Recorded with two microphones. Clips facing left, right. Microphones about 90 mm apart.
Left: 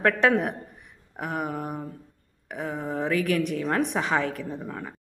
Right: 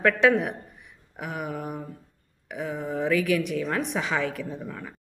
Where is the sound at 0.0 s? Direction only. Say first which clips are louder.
Right 1 dB; 40° left (ahead or behind).